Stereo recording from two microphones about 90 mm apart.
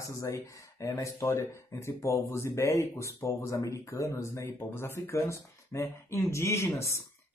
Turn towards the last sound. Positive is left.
turn(degrees=30)  # may be behind; listen again after turning